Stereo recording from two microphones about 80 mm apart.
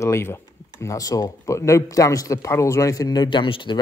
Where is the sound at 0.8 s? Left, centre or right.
Left.